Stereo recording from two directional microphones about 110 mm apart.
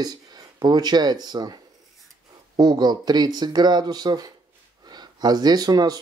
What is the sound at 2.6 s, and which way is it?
Speech, 40° right (ahead or behind).